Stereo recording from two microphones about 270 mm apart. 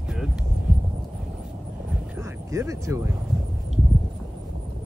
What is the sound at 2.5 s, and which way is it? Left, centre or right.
Speech, centre.